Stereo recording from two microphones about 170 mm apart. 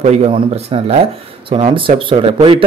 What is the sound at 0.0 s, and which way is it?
A man's voice, 40° right (ahead or behind).